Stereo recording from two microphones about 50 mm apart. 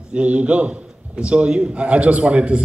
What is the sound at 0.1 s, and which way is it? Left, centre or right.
A man's voice, right.